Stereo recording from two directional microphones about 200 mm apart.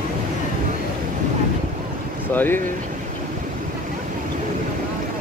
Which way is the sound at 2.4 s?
10° left (ahead or behind).